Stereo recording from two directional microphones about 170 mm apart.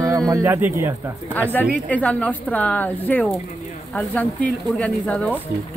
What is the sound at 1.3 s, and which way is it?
Speech, 10° left (ahead or behind).